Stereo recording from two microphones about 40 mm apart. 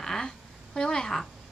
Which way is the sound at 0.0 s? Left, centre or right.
Centre.